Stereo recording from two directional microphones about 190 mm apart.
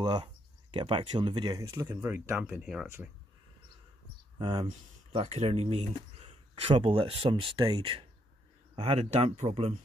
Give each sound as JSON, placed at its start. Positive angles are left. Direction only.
{"t": 0.0, "sound": "speech", "side_deg": -25}
{"t": 4.4, "sound": "speech", "side_deg": -25}